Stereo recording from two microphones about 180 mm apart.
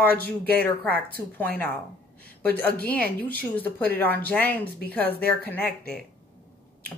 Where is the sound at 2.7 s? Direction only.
10° left (ahead or behind).